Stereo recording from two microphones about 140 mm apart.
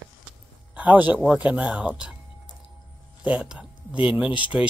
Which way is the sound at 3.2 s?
10° right (ahead or behind).